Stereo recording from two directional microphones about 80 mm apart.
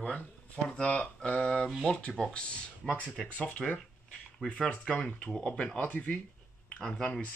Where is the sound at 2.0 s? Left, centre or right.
Centre.